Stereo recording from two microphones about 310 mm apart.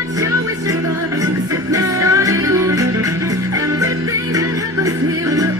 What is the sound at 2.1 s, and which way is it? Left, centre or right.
Music, centre.